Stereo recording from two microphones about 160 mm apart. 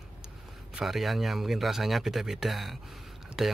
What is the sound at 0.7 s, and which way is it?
Speech, centre (ahead or behind).